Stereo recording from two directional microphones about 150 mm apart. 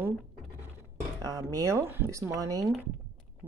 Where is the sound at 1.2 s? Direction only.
25° right (ahead or behind).